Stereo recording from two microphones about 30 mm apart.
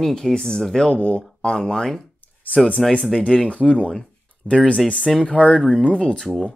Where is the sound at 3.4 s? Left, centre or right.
Left.